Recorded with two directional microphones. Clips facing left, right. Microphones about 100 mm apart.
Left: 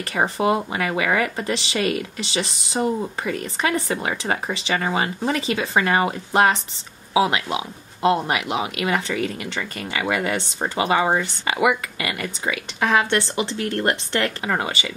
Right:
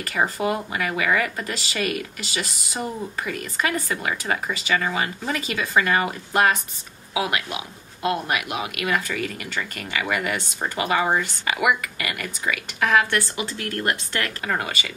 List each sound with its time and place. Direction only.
0.0 s speech: 25° left (ahead or behind)